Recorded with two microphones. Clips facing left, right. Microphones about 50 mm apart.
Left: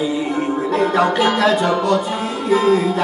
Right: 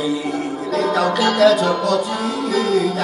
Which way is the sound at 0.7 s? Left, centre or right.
Left.